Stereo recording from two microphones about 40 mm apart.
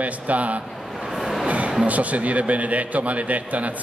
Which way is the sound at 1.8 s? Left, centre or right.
Right.